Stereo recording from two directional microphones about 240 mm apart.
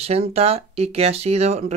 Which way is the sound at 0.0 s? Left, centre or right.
Right.